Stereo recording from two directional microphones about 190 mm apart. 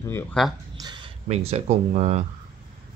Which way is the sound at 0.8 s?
20° right (ahead or behind).